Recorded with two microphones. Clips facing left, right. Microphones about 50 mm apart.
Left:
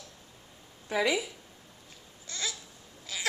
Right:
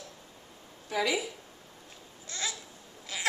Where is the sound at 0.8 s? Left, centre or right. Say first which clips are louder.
Left 2 dB; centre.